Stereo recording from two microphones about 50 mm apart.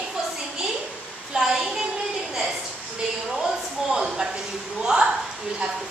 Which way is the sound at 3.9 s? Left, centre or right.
Centre.